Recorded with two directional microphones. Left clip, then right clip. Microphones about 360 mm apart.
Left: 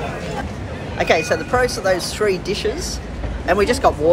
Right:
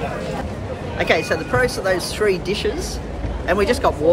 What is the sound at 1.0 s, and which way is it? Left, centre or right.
Speech, centre.